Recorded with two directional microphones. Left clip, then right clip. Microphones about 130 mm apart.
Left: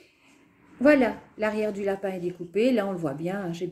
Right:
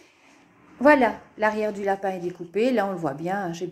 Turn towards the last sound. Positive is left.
turn(degrees=35)  # may be behind; listen again after turning